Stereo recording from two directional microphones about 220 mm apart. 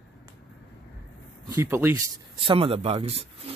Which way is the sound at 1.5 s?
10° right (ahead or behind).